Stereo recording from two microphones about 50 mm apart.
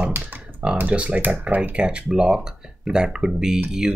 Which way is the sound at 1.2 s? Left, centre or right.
Right.